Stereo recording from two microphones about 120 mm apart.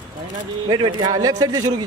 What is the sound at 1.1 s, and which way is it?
Speech, 30° right (ahead or behind).